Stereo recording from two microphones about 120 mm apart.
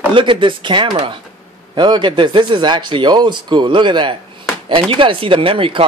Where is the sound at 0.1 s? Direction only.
45° right (ahead or behind).